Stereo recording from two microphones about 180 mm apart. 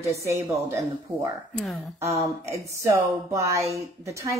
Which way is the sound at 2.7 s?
15° right (ahead or behind).